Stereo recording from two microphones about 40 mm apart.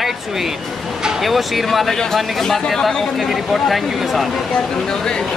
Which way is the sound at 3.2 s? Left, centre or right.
Centre.